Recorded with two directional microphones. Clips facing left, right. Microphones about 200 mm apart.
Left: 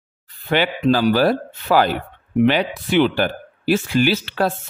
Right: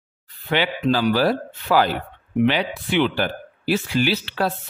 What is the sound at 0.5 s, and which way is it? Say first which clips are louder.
Speech: left 3 dB; 45° left (ahead or behind).